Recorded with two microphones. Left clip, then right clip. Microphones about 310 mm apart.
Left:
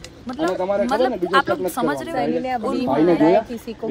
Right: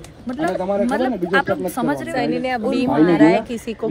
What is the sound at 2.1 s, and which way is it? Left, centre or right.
Speech, right.